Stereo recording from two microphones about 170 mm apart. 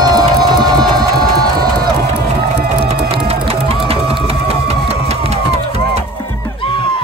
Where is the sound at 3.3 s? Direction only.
35° right (ahead or behind).